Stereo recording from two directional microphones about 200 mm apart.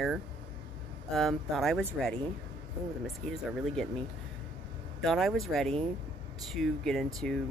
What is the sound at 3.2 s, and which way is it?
Speech, 5° left (ahead or behind).